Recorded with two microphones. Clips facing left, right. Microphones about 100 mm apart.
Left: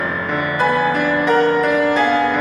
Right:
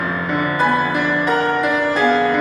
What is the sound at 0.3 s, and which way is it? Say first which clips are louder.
Music: even; centre (ahead or behind).